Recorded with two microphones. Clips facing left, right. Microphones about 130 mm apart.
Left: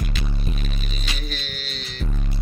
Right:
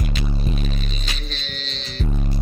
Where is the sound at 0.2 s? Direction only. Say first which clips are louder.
Right 5 dB; centre (ahead or behind).